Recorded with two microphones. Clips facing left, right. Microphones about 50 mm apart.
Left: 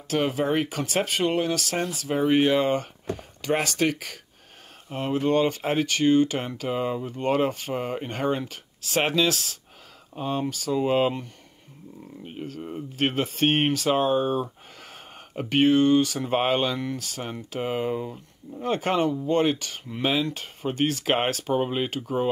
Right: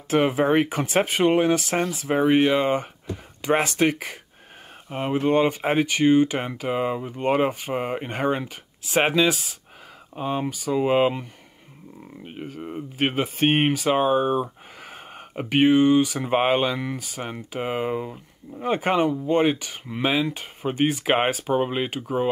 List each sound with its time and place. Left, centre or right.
0.1 s speech: right
12.3 s speech: centre